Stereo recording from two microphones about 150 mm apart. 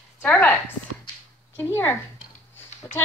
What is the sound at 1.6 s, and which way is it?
Speech, 15° left (ahead or behind).